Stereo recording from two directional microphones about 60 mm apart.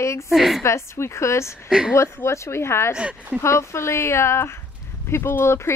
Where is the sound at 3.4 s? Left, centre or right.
Left.